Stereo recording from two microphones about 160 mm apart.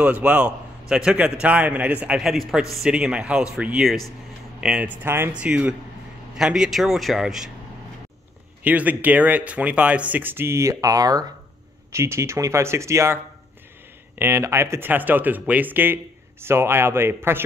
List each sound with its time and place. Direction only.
0.0 s speech: 5° right (ahead or behind)
8.6 s speech: 10° right (ahead or behind)